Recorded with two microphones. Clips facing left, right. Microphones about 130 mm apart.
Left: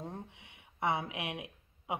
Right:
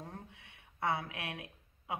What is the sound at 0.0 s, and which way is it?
Speech, 20° left (ahead or behind).